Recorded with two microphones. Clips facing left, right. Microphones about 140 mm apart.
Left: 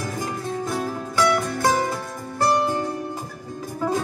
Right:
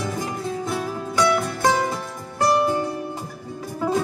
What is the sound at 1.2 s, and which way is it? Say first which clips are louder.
Music: even; 15° right (ahead or behind).